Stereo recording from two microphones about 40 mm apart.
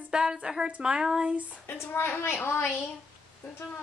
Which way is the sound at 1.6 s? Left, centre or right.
Left.